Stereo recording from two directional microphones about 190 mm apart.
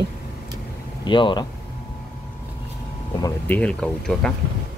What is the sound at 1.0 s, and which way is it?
Speech, 25° left (ahead or behind).